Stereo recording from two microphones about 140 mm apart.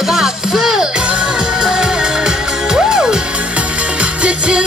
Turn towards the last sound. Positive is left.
turn(degrees=-5)  # may be behind; listen again after turning